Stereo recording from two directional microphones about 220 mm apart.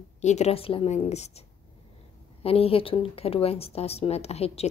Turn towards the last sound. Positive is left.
turn(degrees=30)  # may be behind; listen again after turning